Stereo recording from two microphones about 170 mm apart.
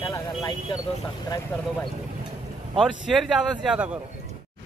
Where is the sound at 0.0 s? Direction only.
25° left (ahead or behind).